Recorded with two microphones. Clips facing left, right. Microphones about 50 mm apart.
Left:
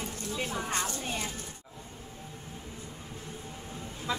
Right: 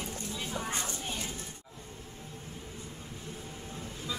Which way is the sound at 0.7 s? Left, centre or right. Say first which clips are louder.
Left 3 dB; left.